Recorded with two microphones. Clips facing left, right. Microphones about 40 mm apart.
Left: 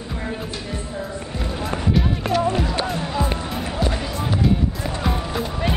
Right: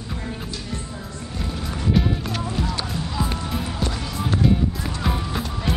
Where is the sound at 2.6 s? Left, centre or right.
Left.